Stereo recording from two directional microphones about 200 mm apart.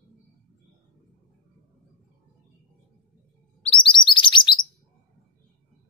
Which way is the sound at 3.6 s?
25° left (ahead or behind).